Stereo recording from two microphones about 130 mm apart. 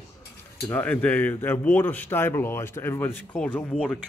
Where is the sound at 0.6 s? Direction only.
10° left (ahead or behind).